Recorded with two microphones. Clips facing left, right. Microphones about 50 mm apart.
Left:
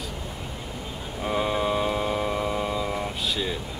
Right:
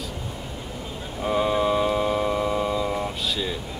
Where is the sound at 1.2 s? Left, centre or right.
Centre.